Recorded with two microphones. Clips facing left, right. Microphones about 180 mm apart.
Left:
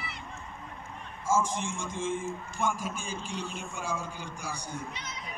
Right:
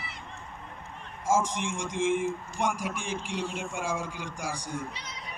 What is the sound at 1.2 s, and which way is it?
A man's voice, 90° right.